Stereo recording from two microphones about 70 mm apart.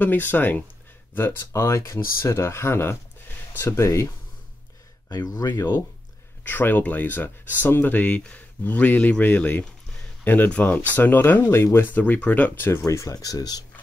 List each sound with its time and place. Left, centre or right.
0.0 s speech: left
1.5 s speech: left
5.1 s speech: left
6.4 s speech: left
12.8 s speech: left